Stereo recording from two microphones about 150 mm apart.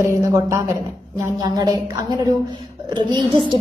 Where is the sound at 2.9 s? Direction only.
30° right (ahead or behind).